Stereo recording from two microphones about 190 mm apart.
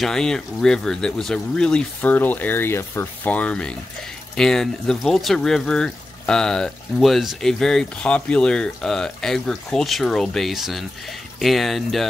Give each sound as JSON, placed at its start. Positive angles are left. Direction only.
{"t": 0.0, "sound": "speech", "side_deg": 5}